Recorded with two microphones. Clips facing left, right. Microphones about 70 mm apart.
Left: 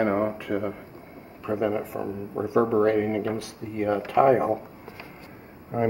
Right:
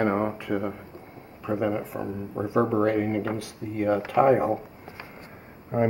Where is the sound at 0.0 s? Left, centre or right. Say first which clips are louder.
Left 1 dB; centre.